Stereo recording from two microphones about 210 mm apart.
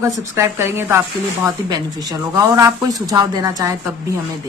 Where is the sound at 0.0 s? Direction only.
15° right (ahead or behind).